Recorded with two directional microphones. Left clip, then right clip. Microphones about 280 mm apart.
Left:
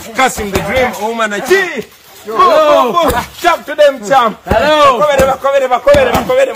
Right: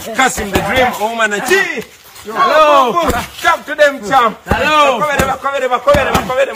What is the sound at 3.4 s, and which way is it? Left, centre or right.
A man's voice, left.